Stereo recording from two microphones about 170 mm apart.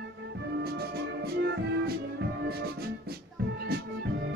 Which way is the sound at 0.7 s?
70° right (ahead or behind).